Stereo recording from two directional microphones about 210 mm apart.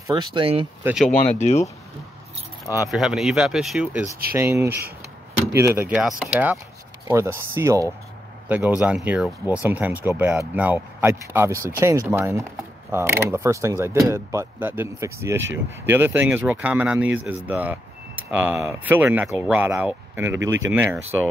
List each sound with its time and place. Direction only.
0.0 s speech: 20° right (ahead or behind)
0.8 s speech: centre (ahead or behind)
1.4 s speech: 30° left (ahead or behind)
2.9 s speech: centre (ahead or behind)